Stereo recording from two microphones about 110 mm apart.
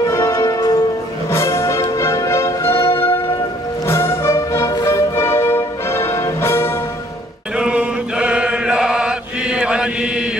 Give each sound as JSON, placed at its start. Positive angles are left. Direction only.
{"t": 0.0, "sound": "music", "side_deg": 25}
{"t": 7.5, "sound": "chant", "side_deg": -10}